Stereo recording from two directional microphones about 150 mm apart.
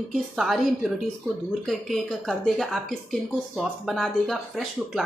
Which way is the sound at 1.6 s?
Centre (ahead or behind).